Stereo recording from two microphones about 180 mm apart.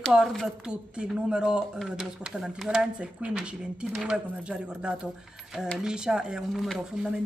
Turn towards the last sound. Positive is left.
turn(degrees=-5)  # may be behind; listen again after turning